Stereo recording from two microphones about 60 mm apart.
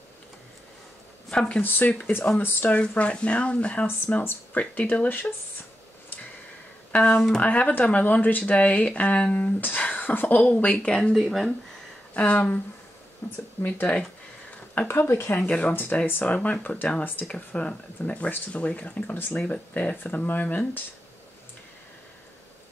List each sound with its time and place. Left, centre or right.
1.3 s speech: centre
1.6 s speech: left
6.9 s speech: left
10.9 s speech: centre
12.1 s speech: left
13.2 s speech: left
13.7 s speech: left
14.9 s speech: left
15.4 s speech: left
17.3 s speech: centre